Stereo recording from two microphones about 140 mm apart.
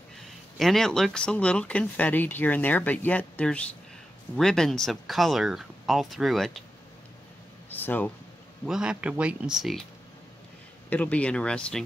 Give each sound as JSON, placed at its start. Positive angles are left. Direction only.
{"t": 0.6, "sound": "speech", "side_deg": 0}
{"t": 7.7, "sound": "speech", "side_deg": 15}
{"t": 8.6, "sound": "speech", "side_deg": -5}
{"t": 10.9, "sound": "speech", "side_deg": 10}